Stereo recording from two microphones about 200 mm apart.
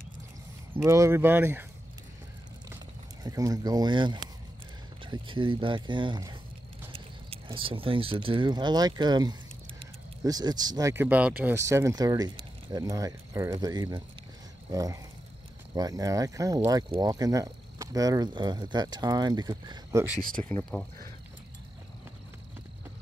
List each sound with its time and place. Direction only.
0.8 s speech: 15° right (ahead or behind)
3.3 s speech: 20° right (ahead or behind)
20.4 s speech: 10° left (ahead or behind)